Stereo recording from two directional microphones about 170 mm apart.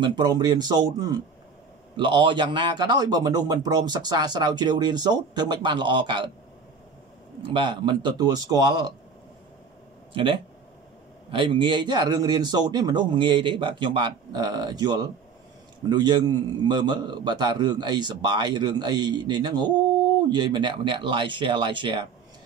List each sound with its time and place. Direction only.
0.0 s speech: 25° right (ahead or behind)
7.4 s speech: 30° right (ahead or behind)
10.1 s speech: 30° right (ahead or behind)